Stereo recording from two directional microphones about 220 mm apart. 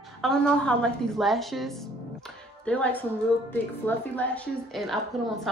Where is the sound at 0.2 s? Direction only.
5° left (ahead or behind).